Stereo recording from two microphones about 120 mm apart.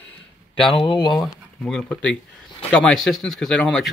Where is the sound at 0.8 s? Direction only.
45° left (ahead or behind).